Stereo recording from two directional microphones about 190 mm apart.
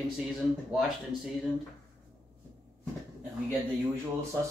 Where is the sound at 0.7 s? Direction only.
Centre (ahead or behind).